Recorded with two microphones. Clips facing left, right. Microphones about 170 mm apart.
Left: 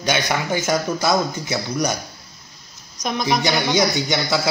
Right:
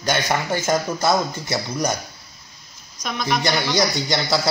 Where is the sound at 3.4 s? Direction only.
Centre (ahead or behind).